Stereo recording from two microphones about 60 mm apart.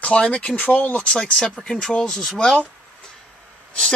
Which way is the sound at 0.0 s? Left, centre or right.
Centre.